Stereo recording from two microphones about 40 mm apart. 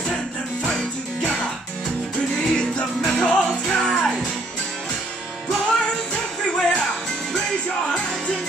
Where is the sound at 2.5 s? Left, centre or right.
Centre.